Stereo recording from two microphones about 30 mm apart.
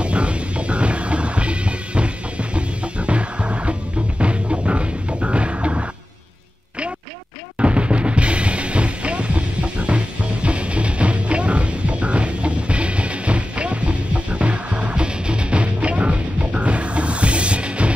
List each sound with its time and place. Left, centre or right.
0.0 s music: right
7.5 s music: right
15.0 s music: right